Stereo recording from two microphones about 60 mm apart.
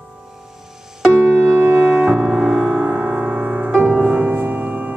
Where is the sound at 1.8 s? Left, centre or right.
Centre.